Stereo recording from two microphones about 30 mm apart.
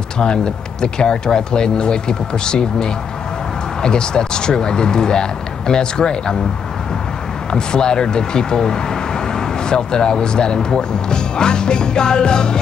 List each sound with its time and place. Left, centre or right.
0.2 s speech: left
7.5 s speech: left